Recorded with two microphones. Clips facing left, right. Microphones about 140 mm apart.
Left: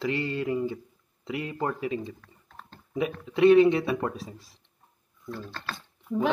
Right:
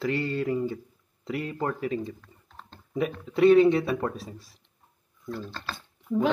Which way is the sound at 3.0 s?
Centre (ahead or behind).